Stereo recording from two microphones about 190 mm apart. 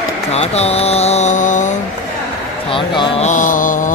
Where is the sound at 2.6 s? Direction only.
25° left (ahead or behind).